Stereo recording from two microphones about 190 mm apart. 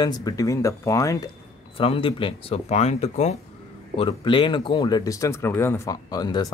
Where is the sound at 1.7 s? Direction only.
30° left (ahead or behind).